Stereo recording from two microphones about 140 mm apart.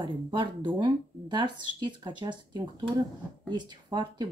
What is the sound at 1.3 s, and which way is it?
Speech, 35° right (ahead or behind).